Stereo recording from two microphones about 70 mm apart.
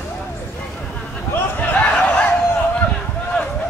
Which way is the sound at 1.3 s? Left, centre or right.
Left.